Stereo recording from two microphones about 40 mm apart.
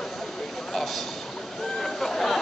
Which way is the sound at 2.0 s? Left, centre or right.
Centre.